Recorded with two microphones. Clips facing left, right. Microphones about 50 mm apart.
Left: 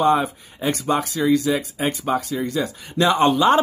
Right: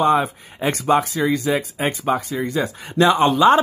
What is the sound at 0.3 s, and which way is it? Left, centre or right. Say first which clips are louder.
A man's voice: right 1 dB; right.